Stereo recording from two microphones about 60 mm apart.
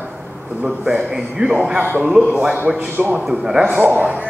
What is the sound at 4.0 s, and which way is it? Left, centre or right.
Speech, right.